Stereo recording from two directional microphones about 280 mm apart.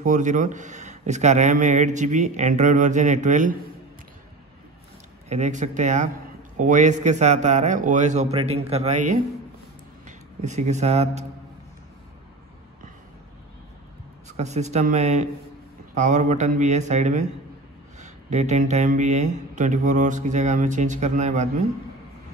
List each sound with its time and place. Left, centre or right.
0.0 s speech: right
5.3 s speech: right
14.2 s speech: right